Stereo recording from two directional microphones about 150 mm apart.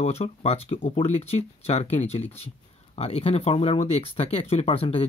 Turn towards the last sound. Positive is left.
turn(degrees=40)  # may be behind; listen again after turning